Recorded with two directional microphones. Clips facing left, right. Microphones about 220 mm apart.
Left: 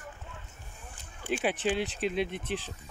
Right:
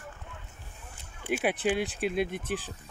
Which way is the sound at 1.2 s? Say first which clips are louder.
Right 1 dB; 10° right (ahead or behind).